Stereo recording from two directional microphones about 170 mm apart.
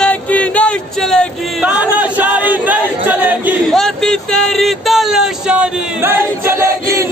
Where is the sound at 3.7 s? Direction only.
Centre (ahead or behind).